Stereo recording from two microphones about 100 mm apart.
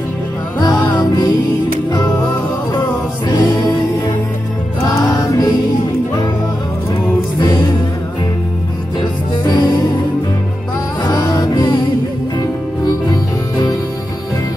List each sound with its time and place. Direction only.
0.6 s music: 45° left (ahead or behind)
3.3 s music: 45° left (ahead or behind)
4.8 s music: 35° left (ahead or behind)
7.3 s music: 45° left (ahead or behind)
9.0 s music: 45° left (ahead or behind)
11.1 s music: 45° left (ahead or behind)
12.8 s music: 40° left (ahead or behind)